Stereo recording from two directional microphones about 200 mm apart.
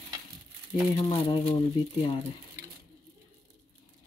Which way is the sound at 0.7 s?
25° left (ahead or behind).